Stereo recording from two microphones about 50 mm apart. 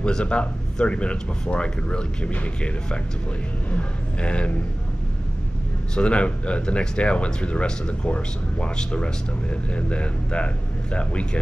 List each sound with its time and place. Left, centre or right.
0.0 s speech: left
5.9 s speech: left